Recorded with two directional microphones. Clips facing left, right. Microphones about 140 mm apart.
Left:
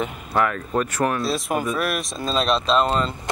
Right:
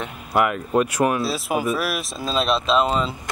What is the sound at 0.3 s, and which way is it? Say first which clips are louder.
Speech: right 3 dB; 10° right (ahead or behind).